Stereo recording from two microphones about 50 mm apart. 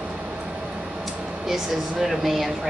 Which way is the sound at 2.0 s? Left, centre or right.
Centre.